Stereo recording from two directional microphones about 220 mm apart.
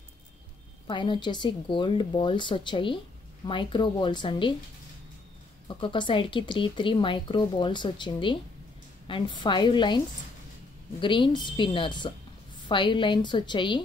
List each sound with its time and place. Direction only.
0.8 s speech: 20° left (ahead or behind)
5.7 s speech: 20° left (ahead or behind)